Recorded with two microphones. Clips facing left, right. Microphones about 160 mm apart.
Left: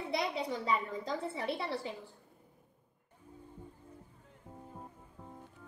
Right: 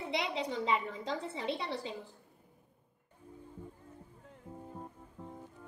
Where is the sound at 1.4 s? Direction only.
20° right (ahead or behind).